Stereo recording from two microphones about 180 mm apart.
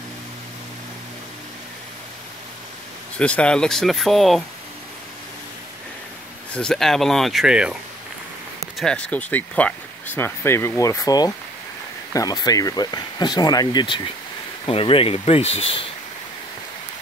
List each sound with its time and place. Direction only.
3.2 s speech: 5° left (ahead or behind)
6.5 s speech: 5° left (ahead or behind)
8.7 s speech: 5° left (ahead or behind); by 15.9 s 30° left (ahead or behind)